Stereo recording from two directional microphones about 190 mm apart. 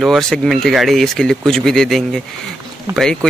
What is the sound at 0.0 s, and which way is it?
Speech, centre (ahead or behind).